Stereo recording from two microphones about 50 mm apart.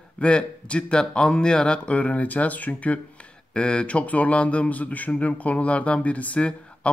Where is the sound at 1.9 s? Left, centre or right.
Left.